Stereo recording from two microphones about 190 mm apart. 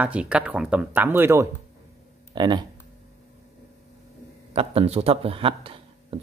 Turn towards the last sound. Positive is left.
turn(degrees=-30)  # may be behind; listen again after turning